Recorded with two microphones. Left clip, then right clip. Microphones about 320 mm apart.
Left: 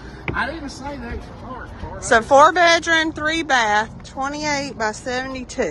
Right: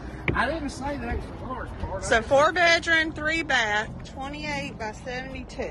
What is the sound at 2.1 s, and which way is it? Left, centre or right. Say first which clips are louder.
Speech: left 8 dB; centre.